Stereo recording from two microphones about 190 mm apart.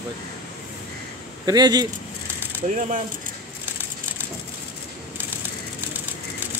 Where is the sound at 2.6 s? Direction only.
40° right (ahead or behind).